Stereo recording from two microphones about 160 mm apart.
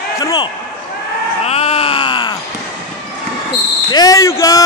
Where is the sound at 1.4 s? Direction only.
40° left (ahead or behind).